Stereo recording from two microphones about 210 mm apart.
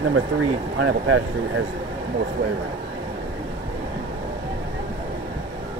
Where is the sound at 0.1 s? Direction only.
70° right (ahead or behind).